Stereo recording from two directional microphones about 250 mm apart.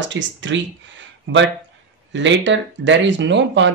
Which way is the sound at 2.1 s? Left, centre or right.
Right.